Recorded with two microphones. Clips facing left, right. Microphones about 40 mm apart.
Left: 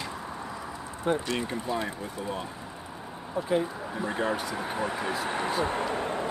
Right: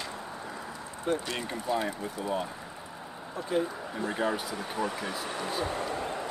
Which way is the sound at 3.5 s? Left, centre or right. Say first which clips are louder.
Left 1 dB; centre.